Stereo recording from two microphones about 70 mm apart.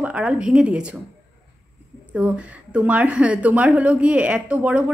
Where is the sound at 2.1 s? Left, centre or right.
Centre.